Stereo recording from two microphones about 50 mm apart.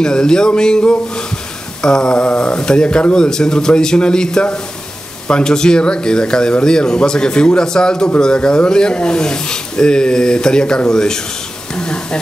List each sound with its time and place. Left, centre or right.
0.0 s speech: centre